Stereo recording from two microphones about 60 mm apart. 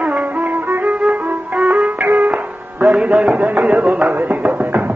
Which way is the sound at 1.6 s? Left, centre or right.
Centre.